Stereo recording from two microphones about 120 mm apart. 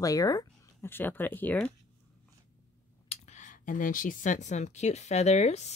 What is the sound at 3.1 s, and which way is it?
Speech, 80° left.